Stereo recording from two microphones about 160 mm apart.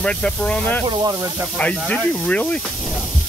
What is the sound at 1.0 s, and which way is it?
Speech, 15° right (ahead or behind).